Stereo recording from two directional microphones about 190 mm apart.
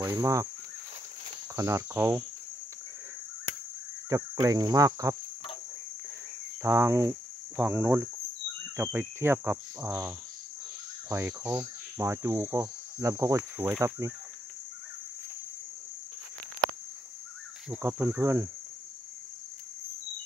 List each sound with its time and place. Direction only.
0.2 s cricket: 15° right (ahead or behind)
1.6 s cricket: 15° right (ahead or behind)
4.1 s cricket: 20° right (ahead or behind)
6.6 s cricket: 15° right (ahead or behind)
17.6 s cricket: 10° right (ahead or behind)